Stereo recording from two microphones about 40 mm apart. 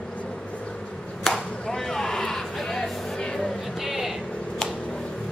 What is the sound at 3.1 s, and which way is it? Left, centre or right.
Vehicle, centre.